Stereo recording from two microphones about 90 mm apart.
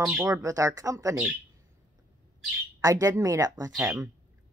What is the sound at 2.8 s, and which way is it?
Speech, 40° right (ahead or behind).